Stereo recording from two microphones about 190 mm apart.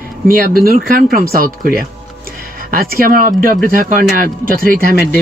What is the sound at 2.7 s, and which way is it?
Speech, 50° right (ahead or behind).